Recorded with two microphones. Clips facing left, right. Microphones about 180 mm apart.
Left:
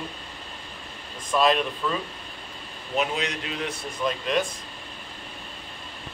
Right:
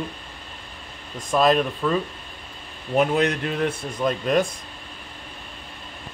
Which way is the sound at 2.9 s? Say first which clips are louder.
Right 7 dB; 50° right (ahead or behind).